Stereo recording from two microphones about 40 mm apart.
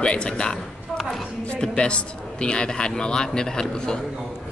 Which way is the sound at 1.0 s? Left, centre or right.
Centre.